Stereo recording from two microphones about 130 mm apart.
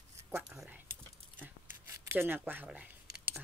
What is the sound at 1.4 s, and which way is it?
Scissors, 15° right (ahead or behind).